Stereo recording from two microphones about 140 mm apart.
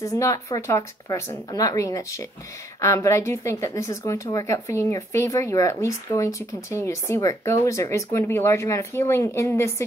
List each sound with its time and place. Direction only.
0.0 s speech: 25° left (ahead or behind)